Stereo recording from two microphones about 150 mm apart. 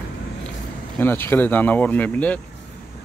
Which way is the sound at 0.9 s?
15° left (ahead or behind).